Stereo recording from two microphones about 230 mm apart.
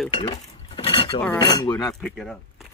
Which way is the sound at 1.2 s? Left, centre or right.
Centre.